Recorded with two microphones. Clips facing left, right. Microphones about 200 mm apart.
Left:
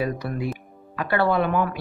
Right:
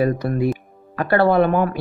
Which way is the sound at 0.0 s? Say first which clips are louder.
Right 7 dB; 45° right (ahead or behind).